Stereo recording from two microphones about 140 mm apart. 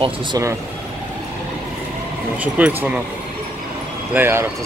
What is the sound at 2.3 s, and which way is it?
Speech, 10° right (ahead or behind).